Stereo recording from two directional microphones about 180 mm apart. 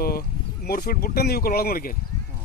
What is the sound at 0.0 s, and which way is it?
Speech, 55° left (ahead or behind).